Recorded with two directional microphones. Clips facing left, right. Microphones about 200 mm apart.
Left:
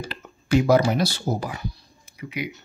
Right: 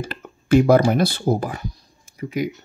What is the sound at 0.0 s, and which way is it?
Speech, 50° right (ahead or behind).